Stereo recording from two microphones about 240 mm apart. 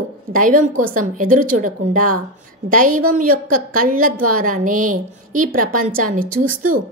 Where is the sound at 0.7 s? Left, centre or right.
Right.